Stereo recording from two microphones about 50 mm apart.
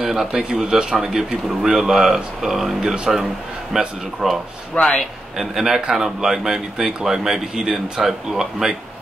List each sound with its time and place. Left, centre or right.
0.0 s speech: centre
4.7 s a man's voice: left
5.4 s speech: centre